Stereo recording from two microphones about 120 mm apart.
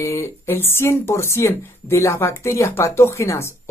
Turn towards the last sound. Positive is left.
turn(degrees=25)  # may be behind; listen again after turning